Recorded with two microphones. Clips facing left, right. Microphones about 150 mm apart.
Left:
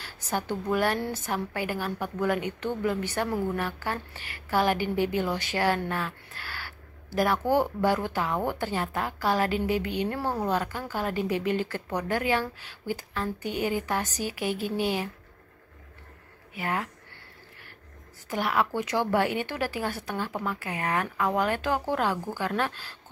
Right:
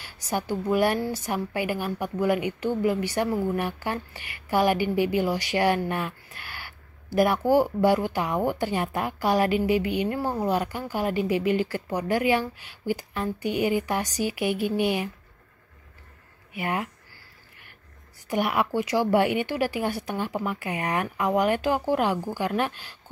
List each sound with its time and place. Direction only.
0.0 s a woman's voice: 10° right (ahead or behind)
1.2 s a woman's voice: 10° right (ahead or behind)
5.9 s a sound: 15° right (ahead or behind)
7.2 s a woman's voice: 10° right (ahead or behind)
16.5 s a woman's voice: 15° right (ahead or behind)
18.3 s a woman's voice: 15° right (ahead or behind)